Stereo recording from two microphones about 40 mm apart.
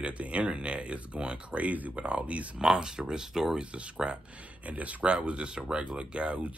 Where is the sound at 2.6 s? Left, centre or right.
Centre.